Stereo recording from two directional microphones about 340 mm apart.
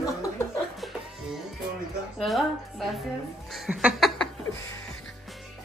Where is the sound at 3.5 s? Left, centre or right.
Centre.